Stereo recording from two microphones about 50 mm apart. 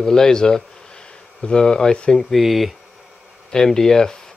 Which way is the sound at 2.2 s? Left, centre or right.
Centre.